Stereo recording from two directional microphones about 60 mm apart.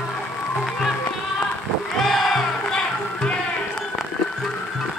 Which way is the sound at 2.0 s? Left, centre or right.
Centre.